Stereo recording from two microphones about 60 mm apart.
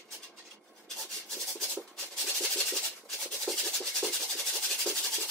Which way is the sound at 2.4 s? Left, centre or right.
Centre.